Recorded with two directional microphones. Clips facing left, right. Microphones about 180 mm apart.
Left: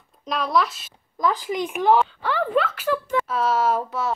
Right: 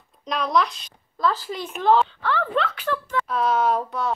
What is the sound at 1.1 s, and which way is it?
Speech, 15° left (ahead or behind).